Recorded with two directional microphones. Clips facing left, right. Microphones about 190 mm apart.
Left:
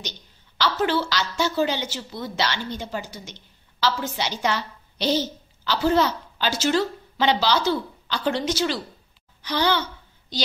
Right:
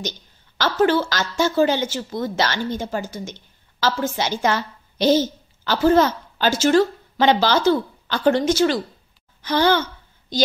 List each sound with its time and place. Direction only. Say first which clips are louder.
0.6 s a woman's voice: right 5 dB; 45° right (ahead or behind)